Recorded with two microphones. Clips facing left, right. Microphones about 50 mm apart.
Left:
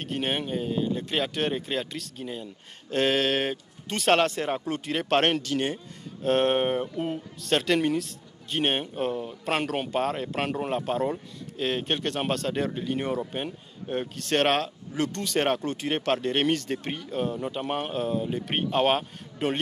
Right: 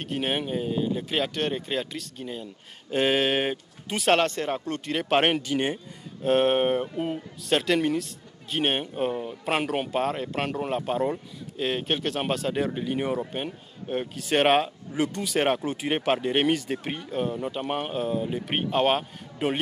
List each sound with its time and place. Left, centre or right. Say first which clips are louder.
0.0 s speech: right 1 dB; centre
5.1 s a man's voice: right 1 dB; centre
6.2 s a man's voice: right 1 dB; centre